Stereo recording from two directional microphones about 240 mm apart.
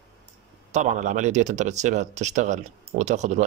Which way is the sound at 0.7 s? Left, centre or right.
Right.